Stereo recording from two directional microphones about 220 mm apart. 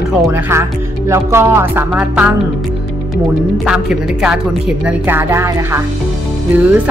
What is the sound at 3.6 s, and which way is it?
Speech, centre (ahead or behind).